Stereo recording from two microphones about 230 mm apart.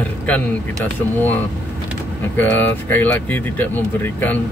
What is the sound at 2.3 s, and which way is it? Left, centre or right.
Speech, centre.